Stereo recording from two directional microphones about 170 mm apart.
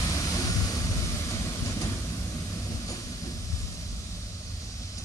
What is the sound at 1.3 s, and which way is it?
Train, 20° left (ahead or behind).